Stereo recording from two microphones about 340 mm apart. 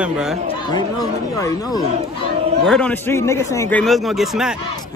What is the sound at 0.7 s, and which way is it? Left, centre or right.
A man's voice, centre.